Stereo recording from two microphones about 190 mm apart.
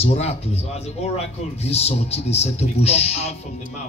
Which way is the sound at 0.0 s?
30° left (ahead or behind).